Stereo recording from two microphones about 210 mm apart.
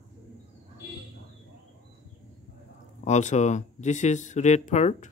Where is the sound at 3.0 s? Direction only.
35° left (ahead or behind).